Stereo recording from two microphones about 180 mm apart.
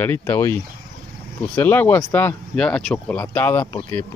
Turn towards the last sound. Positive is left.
turn(degrees=15)  # may be behind; listen again after turning